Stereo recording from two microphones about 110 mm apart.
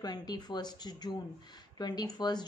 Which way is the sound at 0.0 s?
35° left (ahead or behind).